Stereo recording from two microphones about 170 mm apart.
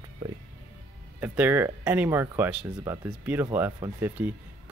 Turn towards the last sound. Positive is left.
turn(degrees=-10)  # may be behind; listen again after turning